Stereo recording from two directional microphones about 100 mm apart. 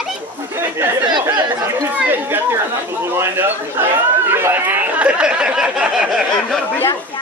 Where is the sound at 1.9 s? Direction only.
20° right (ahead or behind).